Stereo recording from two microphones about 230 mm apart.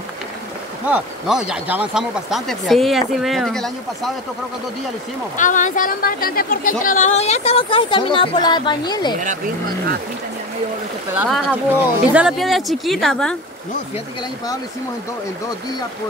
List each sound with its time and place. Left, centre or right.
0.8 s speech: centre
5.4 s speech: left; by 9.1 s centre
11.1 s speech: centre